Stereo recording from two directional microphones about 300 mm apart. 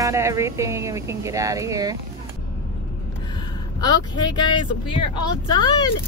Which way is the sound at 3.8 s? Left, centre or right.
Centre.